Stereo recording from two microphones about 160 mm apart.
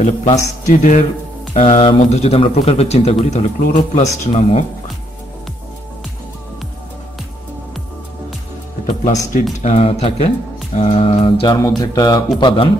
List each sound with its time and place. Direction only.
0.0 s a man's voice: 45° left (ahead or behind)
1.5 s a man's voice: 40° left (ahead or behind)
8.8 s speech: 50° left (ahead or behind); by 12.6 s 30° left (ahead or behind)